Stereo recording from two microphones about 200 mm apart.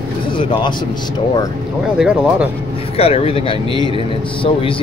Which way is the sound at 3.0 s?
30° left (ahead or behind).